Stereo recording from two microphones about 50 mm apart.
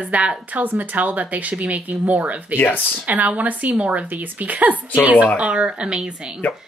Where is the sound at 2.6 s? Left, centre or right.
Left.